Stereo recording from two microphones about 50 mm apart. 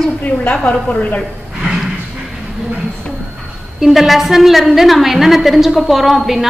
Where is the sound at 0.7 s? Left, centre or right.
Left.